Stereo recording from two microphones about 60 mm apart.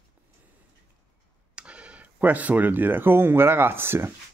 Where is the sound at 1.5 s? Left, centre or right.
Centre.